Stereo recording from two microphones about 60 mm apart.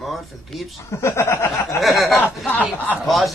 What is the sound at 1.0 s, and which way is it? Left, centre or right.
Speech, left.